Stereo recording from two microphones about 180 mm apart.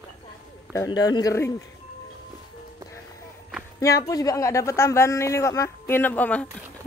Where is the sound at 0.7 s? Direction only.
20° left (ahead or behind).